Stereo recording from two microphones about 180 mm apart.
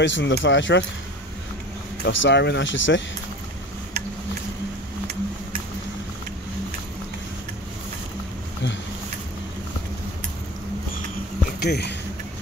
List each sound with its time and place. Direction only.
0.0 s speech: 85° left
2.0 s speech: 75° left (ahead or behind); by 3.0 s 90° left
11.6 s speech: 65° left (ahead or behind)